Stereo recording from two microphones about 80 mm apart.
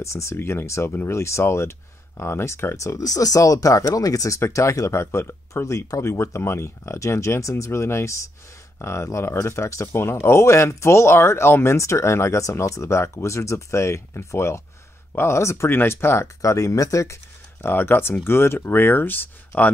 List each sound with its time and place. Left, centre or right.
0.0 s speech: left
16.3 s speech: left